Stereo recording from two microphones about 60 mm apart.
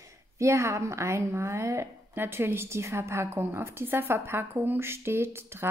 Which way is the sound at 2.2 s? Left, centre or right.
Right.